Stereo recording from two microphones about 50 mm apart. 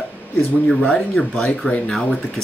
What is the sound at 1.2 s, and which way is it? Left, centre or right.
Speech, left.